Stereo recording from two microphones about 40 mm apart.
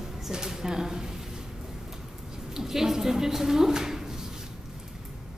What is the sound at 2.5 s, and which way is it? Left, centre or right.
A woman's voice, centre.